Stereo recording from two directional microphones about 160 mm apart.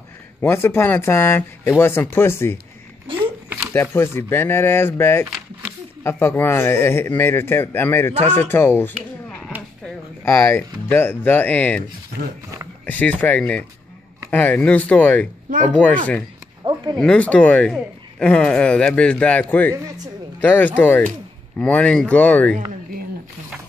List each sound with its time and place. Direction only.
0.4 s speech: 15° left (ahead or behind)
3.1 s a sound: 35° right (ahead or behind)
3.4 s a sound: 10° right (ahead or behind)
3.7 s speech: 15° left (ahead or behind)
8.1 s speech: 45° right (ahead or behind)
8.4 s speech: 15° left (ahead or behind)
10.2 s speech: 10° left (ahead or behind)
12.8 s speech: 10° left (ahead or behind)
16.6 s a sound: 25° right (ahead or behind)
17.0 s speech: 5° left (ahead or behind)